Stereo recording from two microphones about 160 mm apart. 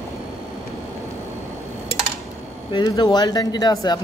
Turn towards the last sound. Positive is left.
turn(degrees=25)  # may be behind; listen again after turning